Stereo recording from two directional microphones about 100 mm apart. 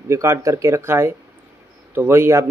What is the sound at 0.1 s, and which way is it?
Speech, 30° right (ahead or behind).